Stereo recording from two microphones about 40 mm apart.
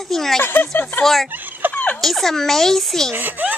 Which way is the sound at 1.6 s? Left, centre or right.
Right.